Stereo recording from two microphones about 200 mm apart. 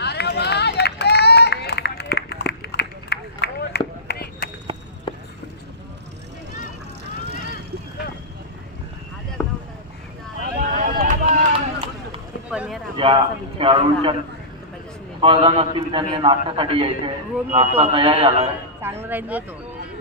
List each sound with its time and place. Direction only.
0.0 s run: 55° left (ahead or behind)
9.4 s boat: 5° left (ahead or behind)
10.4 s boat: 40° right (ahead or behind)
11.6 s run: 30° right (ahead or behind)
12.4 s boat: 5° right (ahead or behind)
12.9 s a man's voice: 25° right (ahead or behind)
15.1 s a man's voice: 25° right (ahead or behind)
18.8 s speech: 10° right (ahead or behind)